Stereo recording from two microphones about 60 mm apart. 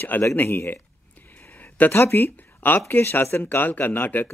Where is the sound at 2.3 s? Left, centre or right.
Left.